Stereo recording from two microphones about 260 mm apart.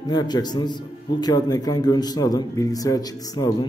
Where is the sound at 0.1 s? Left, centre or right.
Centre.